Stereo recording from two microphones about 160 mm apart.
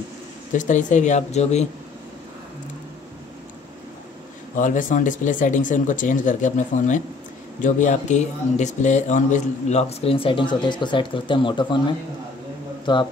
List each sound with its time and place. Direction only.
0.5 s speech: 50° left (ahead or behind)
4.6 s speech: 55° left (ahead or behind); by 11.8 s 30° left (ahead or behind)
12.9 s speech: 30° left (ahead or behind)